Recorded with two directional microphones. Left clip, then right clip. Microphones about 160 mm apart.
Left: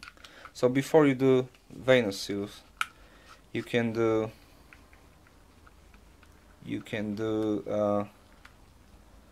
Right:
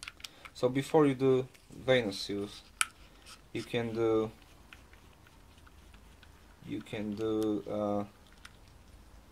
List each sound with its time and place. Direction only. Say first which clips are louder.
0.6 s speech: left 4 dB; 20° left (ahead or behind)
3.5 s speech: left 5 dB; 25° left (ahead or behind)
6.7 s speech: left 4 dB; 20° left (ahead or behind)